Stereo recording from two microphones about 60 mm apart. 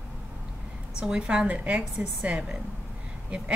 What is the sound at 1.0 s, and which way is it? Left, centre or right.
A woman's voice, centre.